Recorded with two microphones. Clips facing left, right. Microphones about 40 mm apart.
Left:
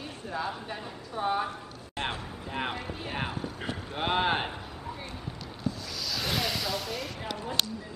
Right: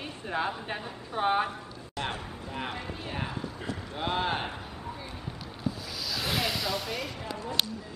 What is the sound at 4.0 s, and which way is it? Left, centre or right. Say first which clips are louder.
Speech: left 3 dB; left.